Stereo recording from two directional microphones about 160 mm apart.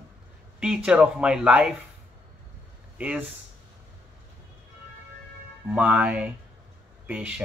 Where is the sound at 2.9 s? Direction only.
10° right (ahead or behind).